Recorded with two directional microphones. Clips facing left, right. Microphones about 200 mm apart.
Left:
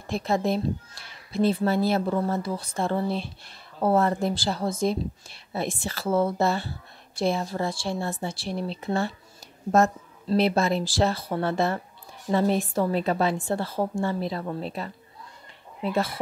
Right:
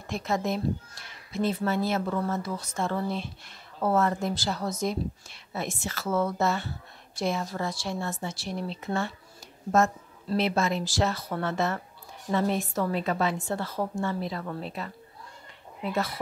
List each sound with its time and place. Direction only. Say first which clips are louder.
0.0 s speech: left 4 dB; 30° left (ahead or behind)
15.8 s speech: left 3 dB; 30° left (ahead or behind)